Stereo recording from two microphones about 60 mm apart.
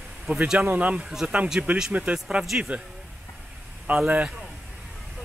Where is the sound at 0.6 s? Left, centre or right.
Right.